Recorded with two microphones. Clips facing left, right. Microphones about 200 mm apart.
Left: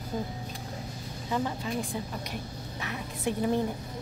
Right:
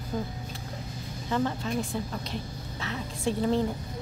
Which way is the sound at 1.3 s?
10° left (ahead or behind).